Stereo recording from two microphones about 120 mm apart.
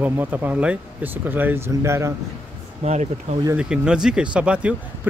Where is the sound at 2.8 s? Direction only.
70° right (ahead or behind).